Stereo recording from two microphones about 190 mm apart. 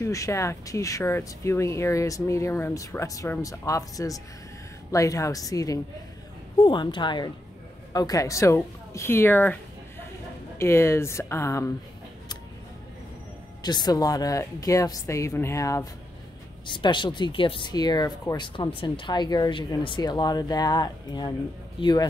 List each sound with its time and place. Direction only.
0.0 s speech: 15° left (ahead or behind)
13.6 s a man's voice: 20° left (ahead or behind)